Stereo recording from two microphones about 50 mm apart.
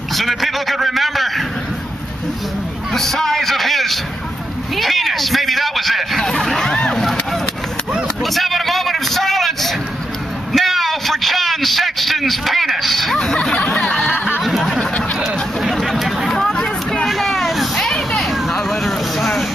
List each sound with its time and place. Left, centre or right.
0.1 s vehicle: centre
2.9 s vehicle: centre
8.2 s vehicle: centre
10.5 s a sound: centre
13.2 s a sound: centre
13.7 s snicker: centre
14.4 s a sound: centre
16.3 s hubbub: centre
16.5 s chatter: centre
17.1 s vehicle: centre